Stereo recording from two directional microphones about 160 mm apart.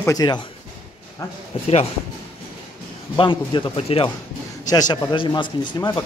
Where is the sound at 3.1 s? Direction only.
30° left (ahead or behind).